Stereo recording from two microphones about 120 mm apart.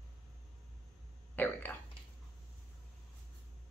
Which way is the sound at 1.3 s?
15° left (ahead or behind).